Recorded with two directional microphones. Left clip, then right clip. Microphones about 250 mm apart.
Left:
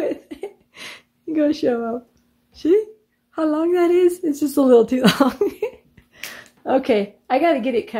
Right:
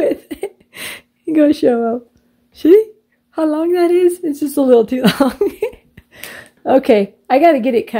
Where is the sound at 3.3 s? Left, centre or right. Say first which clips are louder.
Right 4 dB; centre.